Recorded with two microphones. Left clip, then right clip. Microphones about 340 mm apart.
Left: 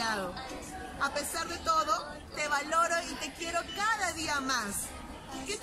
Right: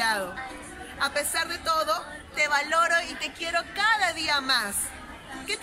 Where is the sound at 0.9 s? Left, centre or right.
Centre.